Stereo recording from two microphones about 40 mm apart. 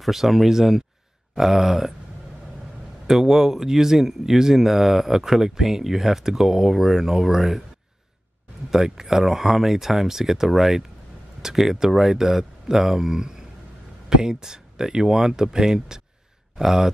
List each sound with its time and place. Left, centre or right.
0.0 s speech: centre
3.1 s speech: centre
8.6 s speech: centre